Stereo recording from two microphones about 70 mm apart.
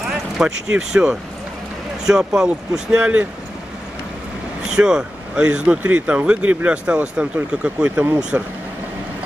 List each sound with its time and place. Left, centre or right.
0.0 s speech: centre
4.6 s speech: centre
7.9 s speech: right